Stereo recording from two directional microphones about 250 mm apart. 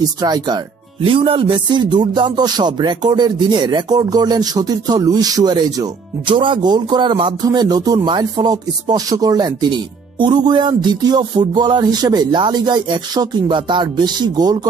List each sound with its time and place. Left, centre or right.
0.2 s music: centre